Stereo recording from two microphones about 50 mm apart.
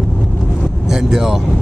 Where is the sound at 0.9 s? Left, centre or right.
Centre.